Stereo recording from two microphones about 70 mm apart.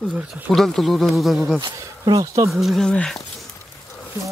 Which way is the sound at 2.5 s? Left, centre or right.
Centre.